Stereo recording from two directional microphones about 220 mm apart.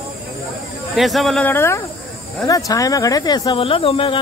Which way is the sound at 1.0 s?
Centre (ahead or behind).